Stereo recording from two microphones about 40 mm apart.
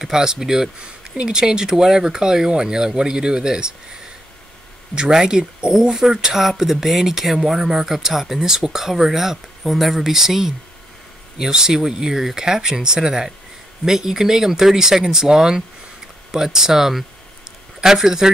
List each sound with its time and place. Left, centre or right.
0.0 s speech: centre
4.9 s speech: centre